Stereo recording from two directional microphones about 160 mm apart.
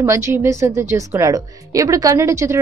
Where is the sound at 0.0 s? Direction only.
15° right (ahead or behind).